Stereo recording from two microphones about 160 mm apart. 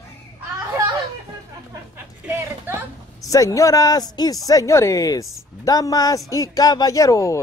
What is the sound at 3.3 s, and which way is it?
A man's voice, 20° left (ahead or behind).